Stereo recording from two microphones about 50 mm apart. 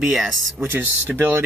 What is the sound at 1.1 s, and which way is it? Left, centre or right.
Speech, right.